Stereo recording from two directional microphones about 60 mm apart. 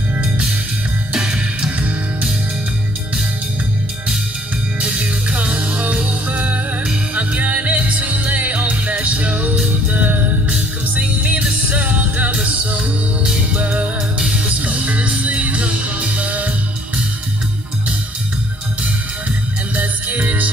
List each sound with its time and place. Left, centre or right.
1.1 s music: centre
4.7 s music: centre
19.7 s music: right